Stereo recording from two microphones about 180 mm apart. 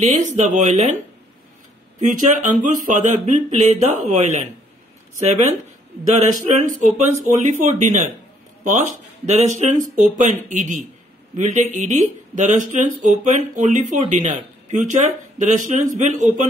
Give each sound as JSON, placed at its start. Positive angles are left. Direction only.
{"t": 0.0, "sound": "speech", "side_deg": -45}